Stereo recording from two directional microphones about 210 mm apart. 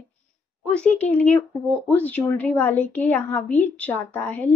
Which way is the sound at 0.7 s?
5° left (ahead or behind).